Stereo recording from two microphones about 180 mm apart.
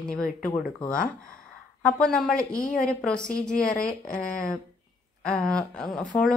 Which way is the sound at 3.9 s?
50° left (ahead or behind).